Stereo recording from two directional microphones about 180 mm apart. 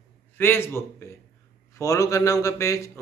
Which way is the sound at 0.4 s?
15° left (ahead or behind).